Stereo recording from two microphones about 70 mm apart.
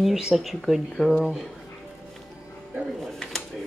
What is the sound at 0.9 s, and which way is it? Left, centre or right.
Speech, centre.